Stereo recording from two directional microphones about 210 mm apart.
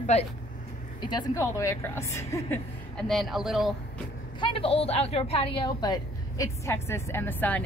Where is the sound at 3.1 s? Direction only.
Centre (ahead or behind).